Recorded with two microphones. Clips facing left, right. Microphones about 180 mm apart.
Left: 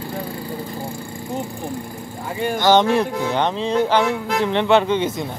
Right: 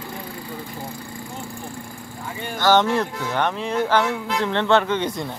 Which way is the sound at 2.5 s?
15° left (ahead or behind).